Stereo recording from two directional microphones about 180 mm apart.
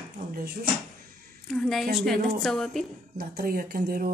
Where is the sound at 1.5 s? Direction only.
Centre (ahead or behind).